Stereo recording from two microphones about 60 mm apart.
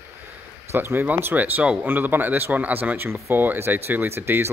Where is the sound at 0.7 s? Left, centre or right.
Right.